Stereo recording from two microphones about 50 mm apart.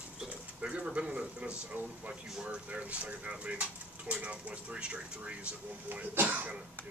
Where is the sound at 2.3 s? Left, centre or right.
Centre.